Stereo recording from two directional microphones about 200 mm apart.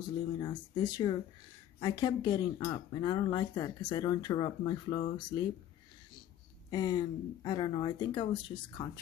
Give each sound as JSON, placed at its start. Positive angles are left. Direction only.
{"t": 0.4, "sound": "speech", "side_deg": 25}
{"t": 6.7, "sound": "speech", "side_deg": 20}